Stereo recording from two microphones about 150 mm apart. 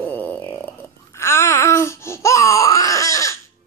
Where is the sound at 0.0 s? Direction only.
15° left (ahead or behind).